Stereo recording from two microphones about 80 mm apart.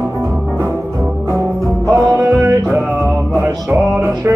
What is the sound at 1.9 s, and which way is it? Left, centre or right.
Music, right.